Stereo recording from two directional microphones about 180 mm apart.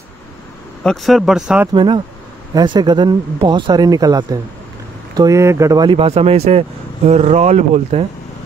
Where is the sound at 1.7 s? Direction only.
25° right (ahead or behind).